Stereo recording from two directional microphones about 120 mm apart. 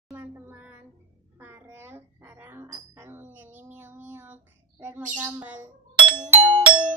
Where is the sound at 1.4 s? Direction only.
20° right (ahead or behind).